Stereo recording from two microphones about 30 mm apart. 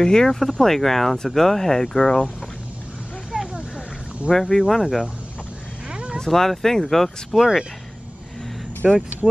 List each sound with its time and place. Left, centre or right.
0.0 s speech: left
0.3 s speech: centre
3.3 s vehicle: right
4.3 s speech: centre
5.9 s vehicle: right
6.1 s speech: centre
8.8 s speech: centre